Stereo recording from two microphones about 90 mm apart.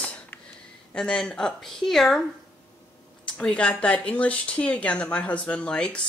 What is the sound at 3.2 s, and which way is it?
Speech, 10° left (ahead or behind).